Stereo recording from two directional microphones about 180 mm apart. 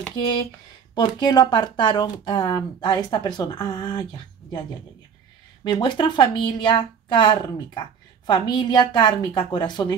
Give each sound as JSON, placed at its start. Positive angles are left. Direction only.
{"t": 0.1, "sound": "speech", "side_deg": 25}
{"t": 5.6, "sound": "speech", "side_deg": 25}